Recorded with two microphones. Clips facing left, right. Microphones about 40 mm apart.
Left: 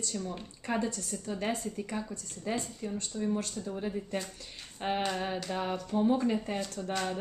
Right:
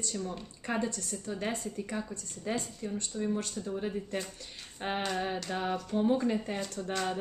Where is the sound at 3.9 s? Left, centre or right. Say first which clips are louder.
Even; centre.